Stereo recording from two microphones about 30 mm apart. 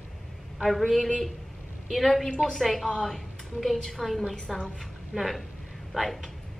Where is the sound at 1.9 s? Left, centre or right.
Centre.